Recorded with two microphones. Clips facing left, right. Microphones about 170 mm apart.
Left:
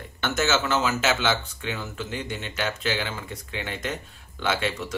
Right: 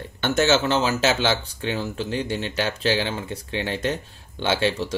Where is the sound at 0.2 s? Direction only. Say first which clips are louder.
Right 5 dB; 30° right (ahead or behind).